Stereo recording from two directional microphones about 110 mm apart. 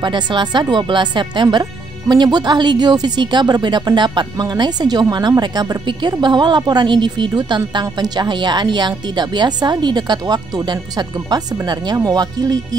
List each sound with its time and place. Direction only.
0.0 s speech: 45° right (ahead or behind)